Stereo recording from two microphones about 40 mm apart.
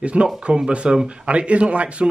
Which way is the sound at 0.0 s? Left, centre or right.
Right.